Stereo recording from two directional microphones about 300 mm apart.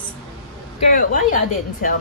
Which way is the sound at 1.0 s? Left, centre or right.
Left.